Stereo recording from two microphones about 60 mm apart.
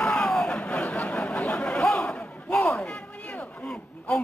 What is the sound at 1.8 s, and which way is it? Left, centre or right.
Speech, centre.